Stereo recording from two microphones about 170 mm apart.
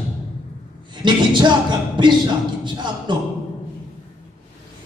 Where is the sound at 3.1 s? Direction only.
25° right (ahead or behind).